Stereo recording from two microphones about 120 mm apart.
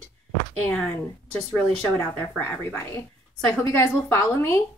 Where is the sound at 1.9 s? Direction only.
20° left (ahead or behind).